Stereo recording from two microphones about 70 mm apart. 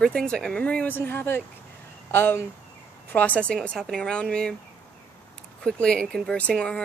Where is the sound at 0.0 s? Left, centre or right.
Centre.